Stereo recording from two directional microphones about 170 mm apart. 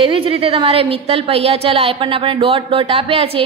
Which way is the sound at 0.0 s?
30° right (ahead or behind).